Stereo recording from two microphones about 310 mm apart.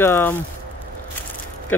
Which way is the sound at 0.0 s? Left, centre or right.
Centre.